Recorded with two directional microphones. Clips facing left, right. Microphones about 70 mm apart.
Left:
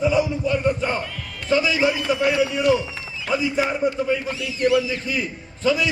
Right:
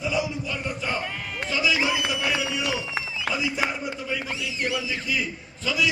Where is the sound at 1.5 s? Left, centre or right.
Left.